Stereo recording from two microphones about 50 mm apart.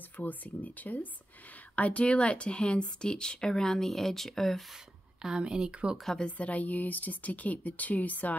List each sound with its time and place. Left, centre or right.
0.2 s speech: left; by 4.6 s centre
5.2 s speech: centre
6.2 s speech: left